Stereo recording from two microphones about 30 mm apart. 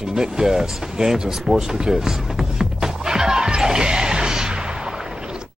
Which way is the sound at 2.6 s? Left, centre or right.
Right.